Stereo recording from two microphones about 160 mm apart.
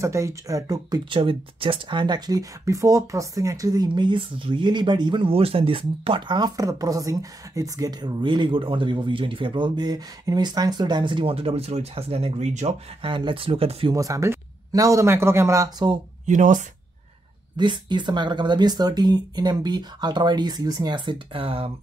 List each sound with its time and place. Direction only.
0.0 s speech: 20° right (ahead or behind); by 13.9 s 35° right (ahead or behind)
13.9 s speech: 20° right (ahead or behind)
16.3 s speech: 50° right (ahead or behind)
17.6 s speech: 30° right (ahead or behind)